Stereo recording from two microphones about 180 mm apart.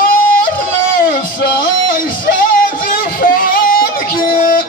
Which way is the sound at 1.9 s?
50° left (ahead or behind).